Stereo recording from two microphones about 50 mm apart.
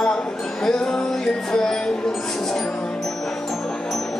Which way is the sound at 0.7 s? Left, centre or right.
Centre.